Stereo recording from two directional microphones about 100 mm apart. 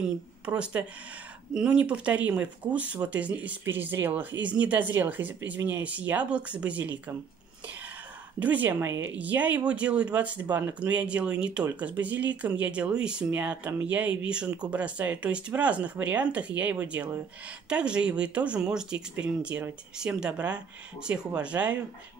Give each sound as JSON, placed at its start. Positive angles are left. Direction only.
{"t": 0.0, "sound": "speech", "side_deg": -15}
{"t": 8.4, "sound": "speech", "side_deg": -15}